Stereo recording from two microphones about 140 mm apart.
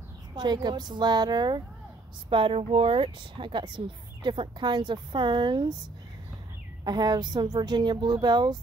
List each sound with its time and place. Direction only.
0.4 s speech: 30° right (ahead or behind)
6.8 s speech: 30° right (ahead or behind)